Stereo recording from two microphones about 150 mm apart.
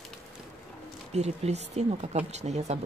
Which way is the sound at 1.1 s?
45° right (ahead or behind).